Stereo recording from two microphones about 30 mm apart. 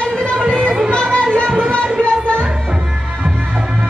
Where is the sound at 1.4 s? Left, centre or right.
Right.